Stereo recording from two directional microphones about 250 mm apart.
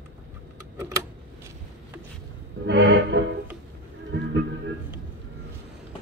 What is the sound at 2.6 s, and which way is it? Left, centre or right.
Music, right.